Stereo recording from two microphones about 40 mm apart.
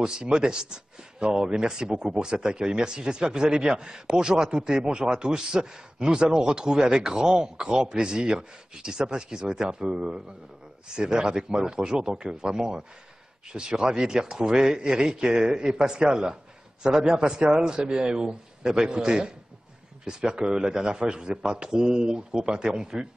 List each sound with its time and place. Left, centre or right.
0.0 s speech: centre